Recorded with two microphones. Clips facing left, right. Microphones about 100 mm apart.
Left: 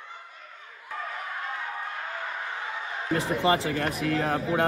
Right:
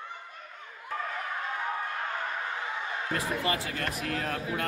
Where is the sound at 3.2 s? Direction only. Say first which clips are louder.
Left 8 dB; 30° left (ahead or behind).